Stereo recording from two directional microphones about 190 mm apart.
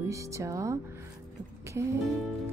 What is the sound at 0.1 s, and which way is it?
Speech, 15° right (ahead or behind).